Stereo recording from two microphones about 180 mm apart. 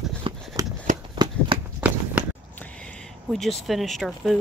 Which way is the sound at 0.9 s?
45° right (ahead or behind).